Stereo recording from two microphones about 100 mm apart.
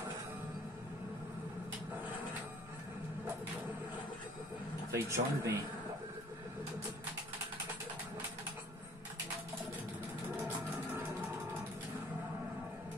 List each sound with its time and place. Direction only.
4.9 s speech: 25° right (ahead or behind)